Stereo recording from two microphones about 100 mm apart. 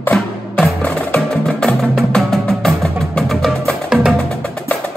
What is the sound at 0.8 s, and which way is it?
Music, 10° left (ahead or behind).